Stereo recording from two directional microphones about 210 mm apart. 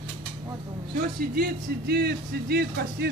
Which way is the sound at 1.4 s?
50° right (ahead or behind).